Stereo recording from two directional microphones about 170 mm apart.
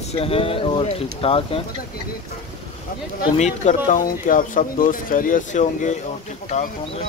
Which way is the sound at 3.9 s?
50° left (ahead or behind).